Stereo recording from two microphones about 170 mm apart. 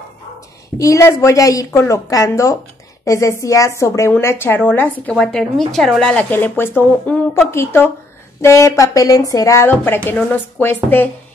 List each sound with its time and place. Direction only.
0.7 s a woman's voice: 20° left (ahead or behind)